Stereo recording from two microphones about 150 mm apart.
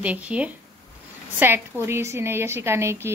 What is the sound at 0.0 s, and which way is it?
A woman's voice, 10° right (ahead or behind).